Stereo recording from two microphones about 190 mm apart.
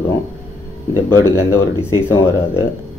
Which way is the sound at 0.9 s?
15° left (ahead or behind).